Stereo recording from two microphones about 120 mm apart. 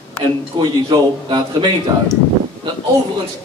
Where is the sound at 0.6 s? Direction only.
40° right (ahead or behind).